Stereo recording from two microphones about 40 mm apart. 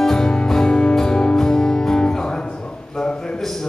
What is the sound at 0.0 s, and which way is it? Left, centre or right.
Music, centre.